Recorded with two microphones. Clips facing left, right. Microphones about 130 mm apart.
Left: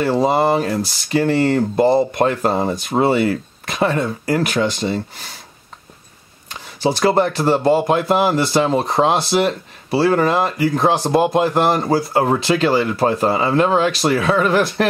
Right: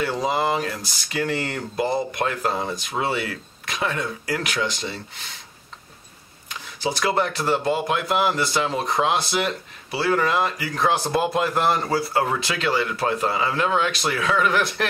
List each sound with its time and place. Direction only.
0.0 s speech: 30° left (ahead or behind)
6.5 s speech: 30° left (ahead or behind)